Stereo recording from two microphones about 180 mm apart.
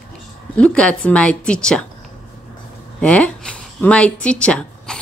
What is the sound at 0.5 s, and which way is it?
Speech, 5° left (ahead or behind).